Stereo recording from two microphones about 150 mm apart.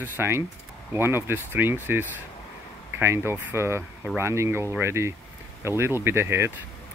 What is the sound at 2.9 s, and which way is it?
Speech, 15° right (ahead or behind).